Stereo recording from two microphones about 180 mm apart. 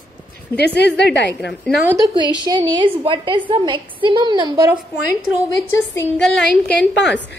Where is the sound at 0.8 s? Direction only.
70° left (ahead or behind).